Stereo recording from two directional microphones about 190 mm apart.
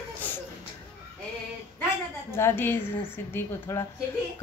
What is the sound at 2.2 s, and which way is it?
A woman's voice, 15° left (ahead or behind).